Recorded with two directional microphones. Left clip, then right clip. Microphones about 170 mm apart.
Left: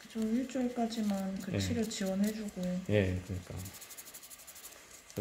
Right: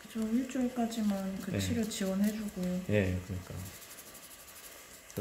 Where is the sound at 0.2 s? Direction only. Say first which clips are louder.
Right 1 dB; 30° left (ahead or behind).